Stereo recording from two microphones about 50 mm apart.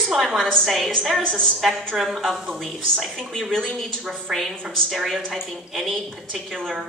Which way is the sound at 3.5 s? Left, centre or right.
Centre.